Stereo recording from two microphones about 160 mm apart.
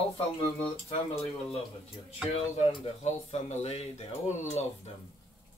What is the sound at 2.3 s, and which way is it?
Speech, 40° left (ahead or behind).